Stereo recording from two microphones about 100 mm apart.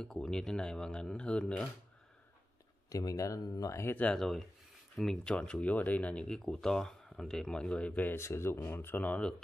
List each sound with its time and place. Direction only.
0.0 s speech: 5° left (ahead or behind)
2.9 s speech: 35° left (ahead or behind)
3.8 s speech: 15° left (ahead or behind)
4.2 s speech: centre (ahead or behind)